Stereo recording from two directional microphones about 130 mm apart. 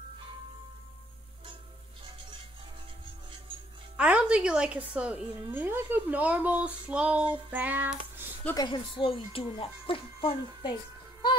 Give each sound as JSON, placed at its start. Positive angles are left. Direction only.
{"t": 3.9, "sound": "a woman's voice", "side_deg": -10}
{"t": 8.5, "sound": "speech", "side_deg": 40}